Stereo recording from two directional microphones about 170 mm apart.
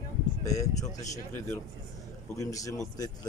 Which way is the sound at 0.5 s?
20° left (ahead or behind).